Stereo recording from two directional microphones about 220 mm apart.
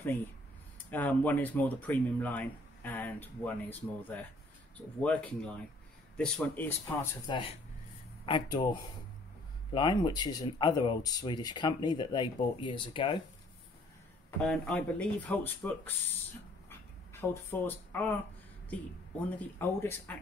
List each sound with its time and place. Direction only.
0.8 s speech: 5° left (ahead or behind)
7.2 s speech: 20° left (ahead or behind)
9.7 s speech: 20° left (ahead or behind)
14.4 s speech: 5° left (ahead or behind)
16.6 s a sound: 10° left (ahead or behind)
19.3 s speech: 10° left (ahead or behind)